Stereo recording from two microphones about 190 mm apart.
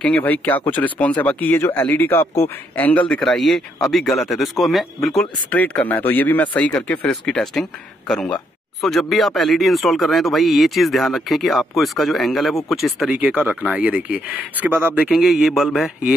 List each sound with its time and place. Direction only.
0.0 s speech: 5° left (ahead or behind)